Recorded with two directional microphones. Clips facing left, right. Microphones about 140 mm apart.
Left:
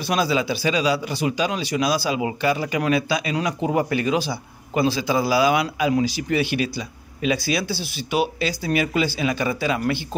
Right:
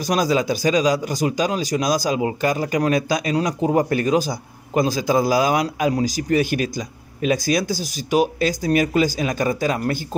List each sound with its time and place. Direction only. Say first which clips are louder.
0.0 s speech: right 2 dB; 40° right (ahead or behind)